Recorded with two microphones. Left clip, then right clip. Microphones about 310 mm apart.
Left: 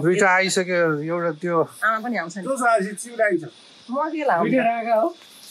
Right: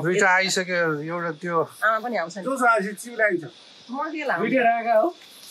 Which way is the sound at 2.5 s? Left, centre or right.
Centre.